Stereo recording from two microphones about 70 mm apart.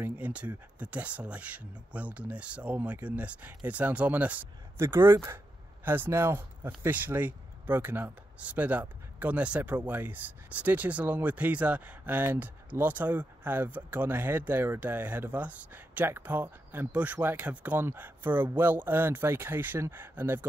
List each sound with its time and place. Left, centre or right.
0.2 s speech: centre
4.7 s speech: right